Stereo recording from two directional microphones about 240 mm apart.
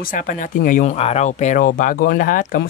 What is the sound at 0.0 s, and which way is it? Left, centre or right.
Speech, left.